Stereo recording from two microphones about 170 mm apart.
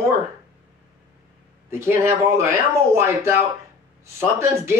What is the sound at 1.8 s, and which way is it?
Speech, 15° right (ahead or behind).